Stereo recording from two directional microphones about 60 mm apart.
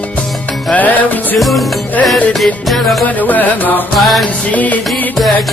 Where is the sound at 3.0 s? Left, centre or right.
Left.